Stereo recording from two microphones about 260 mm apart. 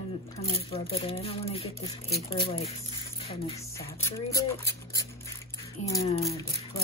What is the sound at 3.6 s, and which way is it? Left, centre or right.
Speech, centre.